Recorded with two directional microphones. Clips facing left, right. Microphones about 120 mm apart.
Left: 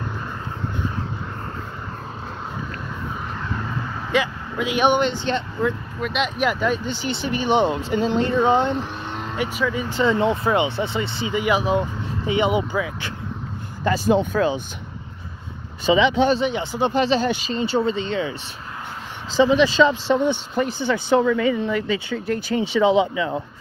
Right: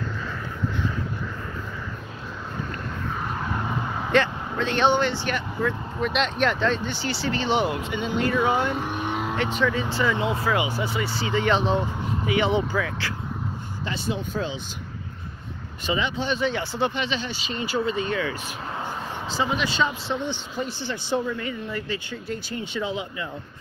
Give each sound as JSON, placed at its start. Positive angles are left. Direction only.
{"t": 4.1, "sound": "speech", "side_deg": 10}
{"t": 5.9, "sound": "speech", "side_deg": 5}
{"t": 8.7, "sound": "vehicle", "side_deg": -15}
{"t": 9.4, "sound": "speech", "side_deg": 10}
{"t": 13.8, "sound": "speech", "side_deg": 45}
{"t": 16.0, "sound": "speech", "side_deg": 90}
{"t": 16.4, "sound": "speech", "side_deg": 15}
{"t": 16.9, "sound": "speech", "side_deg": 40}
{"t": 20.2, "sound": "speech", "side_deg": 55}
{"t": 21.2, "sound": "speech", "side_deg": 90}